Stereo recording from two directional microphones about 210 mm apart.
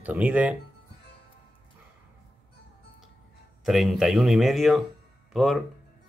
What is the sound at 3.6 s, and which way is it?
Speech, centre (ahead or behind).